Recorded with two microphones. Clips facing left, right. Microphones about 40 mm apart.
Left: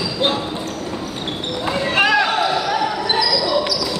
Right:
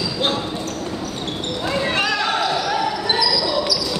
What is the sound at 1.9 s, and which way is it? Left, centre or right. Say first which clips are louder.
Basketball bounce: left 8 dB; centre.